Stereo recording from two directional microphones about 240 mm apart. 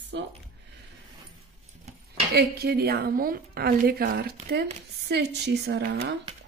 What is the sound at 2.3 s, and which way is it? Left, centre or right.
A woman's voice, right.